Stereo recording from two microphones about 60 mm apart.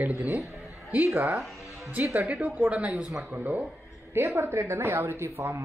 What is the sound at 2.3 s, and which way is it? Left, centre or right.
Speech, right.